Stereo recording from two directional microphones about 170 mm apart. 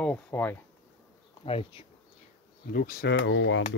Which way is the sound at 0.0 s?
10° left (ahead or behind).